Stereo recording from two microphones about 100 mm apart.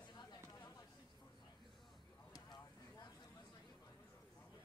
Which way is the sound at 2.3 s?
45° left (ahead or behind).